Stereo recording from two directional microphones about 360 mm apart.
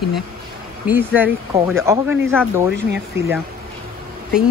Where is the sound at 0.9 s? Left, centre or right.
Centre.